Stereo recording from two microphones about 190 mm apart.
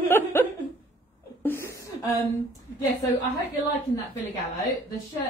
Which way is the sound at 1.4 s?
10° left (ahead or behind).